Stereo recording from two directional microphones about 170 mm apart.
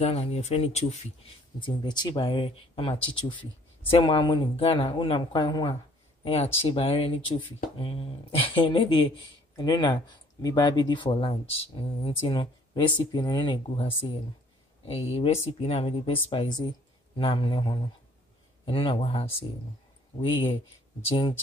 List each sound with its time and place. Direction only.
0.0 s speech: 35° left (ahead or behind)
1.6 s speech: 25° left (ahead or behind)
14.9 s speech: 35° left (ahead or behind)